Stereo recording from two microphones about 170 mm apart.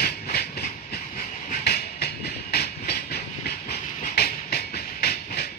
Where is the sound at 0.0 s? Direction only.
70° left (ahead or behind).